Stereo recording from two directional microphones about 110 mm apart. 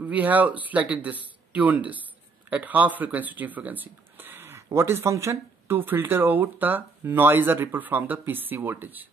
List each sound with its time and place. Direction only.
0.0 s speech: 15° right (ahead or behind)